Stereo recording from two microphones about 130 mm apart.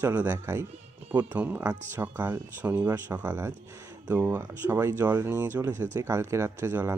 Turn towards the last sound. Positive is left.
turn(degrees=-20)  # may be behind; listen again after turning